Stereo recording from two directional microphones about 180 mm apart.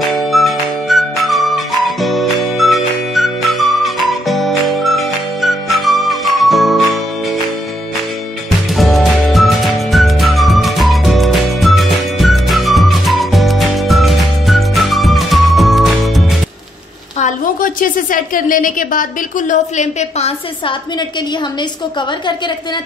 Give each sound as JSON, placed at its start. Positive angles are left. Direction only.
{"t": 0.0, "sound": "music", "side_deg": 0}
{"t": 8.7, "sound": "music", "side_deg": 0}
{"t": 17.2, "sound": "a woman's voice", "side_deg": 50}